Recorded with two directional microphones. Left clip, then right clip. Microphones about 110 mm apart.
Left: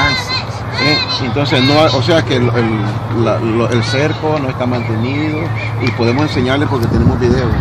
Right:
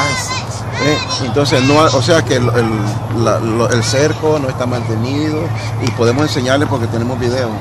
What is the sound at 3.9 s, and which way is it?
Speech, 15° right (ahead or behind).